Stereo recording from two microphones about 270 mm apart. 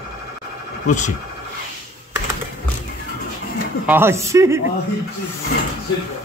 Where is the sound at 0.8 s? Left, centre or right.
Left.